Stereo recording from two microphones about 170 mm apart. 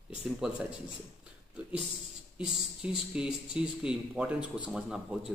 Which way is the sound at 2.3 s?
5° right (ahead or behind).